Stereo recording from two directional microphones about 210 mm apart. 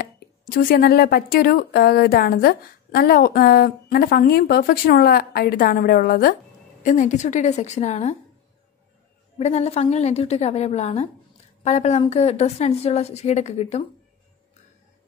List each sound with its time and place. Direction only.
0.0 s a woman's voice: 45° left (ahead or behind)
9.4 s a woman's voice: 30° left (ahead or behind)